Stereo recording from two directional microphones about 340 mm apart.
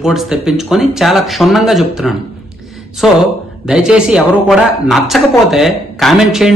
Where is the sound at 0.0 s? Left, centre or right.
Centre.